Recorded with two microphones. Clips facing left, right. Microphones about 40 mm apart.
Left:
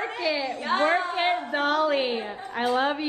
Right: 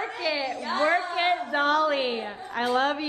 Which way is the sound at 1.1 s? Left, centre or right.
Left.